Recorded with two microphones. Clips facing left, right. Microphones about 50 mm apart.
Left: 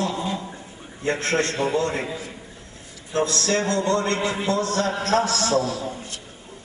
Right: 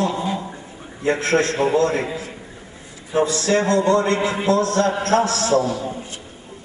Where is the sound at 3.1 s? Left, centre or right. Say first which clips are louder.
Right 4 dB; centre.